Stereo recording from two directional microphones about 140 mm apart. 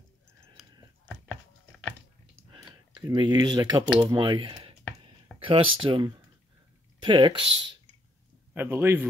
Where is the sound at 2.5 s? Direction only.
30° right (ahead or behind).